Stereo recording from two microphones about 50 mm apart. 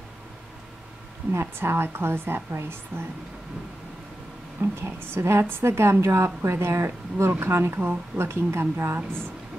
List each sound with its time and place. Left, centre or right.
1.3 s a woman's voice: right
4.6 s a woman's voice: right